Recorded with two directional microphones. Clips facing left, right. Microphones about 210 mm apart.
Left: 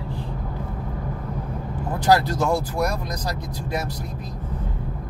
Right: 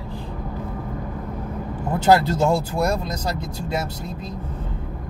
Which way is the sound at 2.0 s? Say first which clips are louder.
Right 2 dB; 25° right (ahead or behind).